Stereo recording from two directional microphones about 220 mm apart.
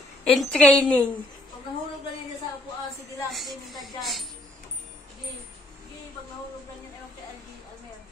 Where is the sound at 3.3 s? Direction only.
Centre (ahead or behind).